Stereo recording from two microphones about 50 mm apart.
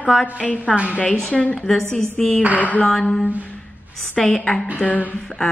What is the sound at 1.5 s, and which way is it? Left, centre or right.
A woman's voice, centre.